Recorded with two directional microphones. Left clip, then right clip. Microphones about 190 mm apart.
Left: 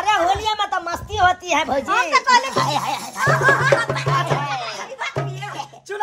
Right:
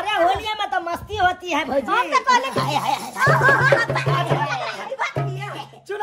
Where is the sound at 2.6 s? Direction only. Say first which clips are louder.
Left 2 dB; 15° left (ahead or behind).